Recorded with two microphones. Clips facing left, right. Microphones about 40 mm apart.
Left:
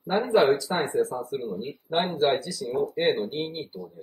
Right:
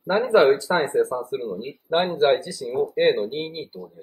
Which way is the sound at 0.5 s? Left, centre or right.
Right.